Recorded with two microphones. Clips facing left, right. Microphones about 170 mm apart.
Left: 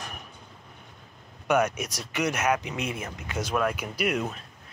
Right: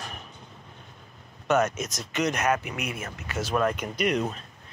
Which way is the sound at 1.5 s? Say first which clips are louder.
Even; 10° left (ahead or behind).